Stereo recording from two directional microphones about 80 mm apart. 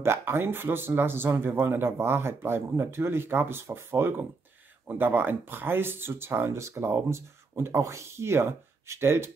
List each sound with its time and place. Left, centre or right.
0.0 s speech: right